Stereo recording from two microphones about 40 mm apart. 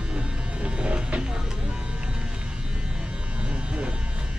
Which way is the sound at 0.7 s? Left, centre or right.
Right.